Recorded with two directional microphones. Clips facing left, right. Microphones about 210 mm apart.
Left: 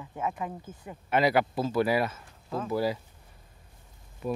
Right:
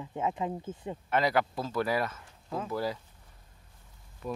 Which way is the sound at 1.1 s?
10° left (ahead or behind).